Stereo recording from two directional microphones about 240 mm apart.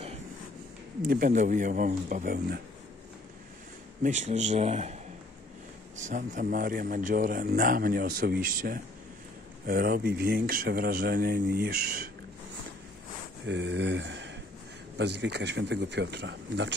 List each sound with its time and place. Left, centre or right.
1.0 s a man's voice: right
4.0 s speech: right
5.9 s a man's voice: right
13.5 s speech: right